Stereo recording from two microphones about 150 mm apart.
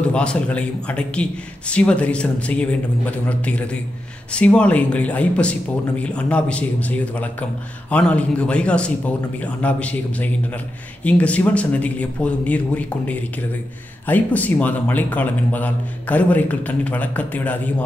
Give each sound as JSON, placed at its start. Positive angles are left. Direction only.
{"t": 0.1, "sound": "speech", "side_deg": 5}